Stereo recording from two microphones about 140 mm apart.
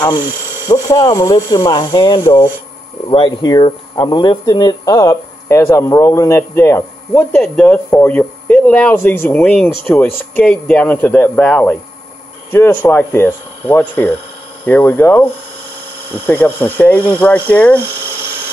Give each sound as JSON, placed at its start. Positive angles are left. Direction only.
{"t": 0.7, "sound": "speech", "side_deg": 25}
{"t": 16.3, "sound": "speech", "side_deg": 15}